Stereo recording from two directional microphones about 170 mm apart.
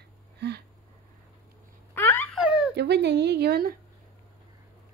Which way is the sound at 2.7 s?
85° right.